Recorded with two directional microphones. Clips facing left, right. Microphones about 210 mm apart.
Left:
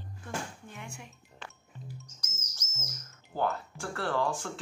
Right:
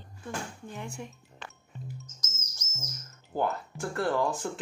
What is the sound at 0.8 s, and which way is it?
Speech, 35° right (ahead or behind).